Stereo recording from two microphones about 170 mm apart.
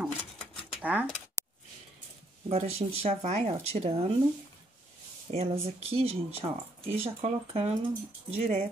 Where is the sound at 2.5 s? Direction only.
40° right (ahead or behind).